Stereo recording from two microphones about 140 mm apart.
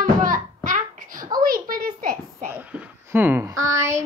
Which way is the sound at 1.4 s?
90° right.